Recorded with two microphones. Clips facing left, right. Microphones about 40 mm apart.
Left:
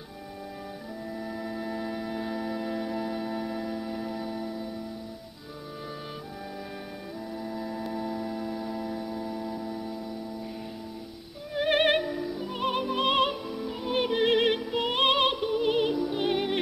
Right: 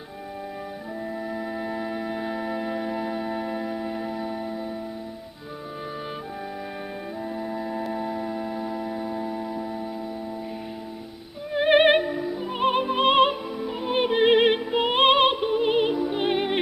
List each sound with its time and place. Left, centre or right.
1.3 s music: right
7.3 s organ: right
7.9 s music: right
11.5 s music: right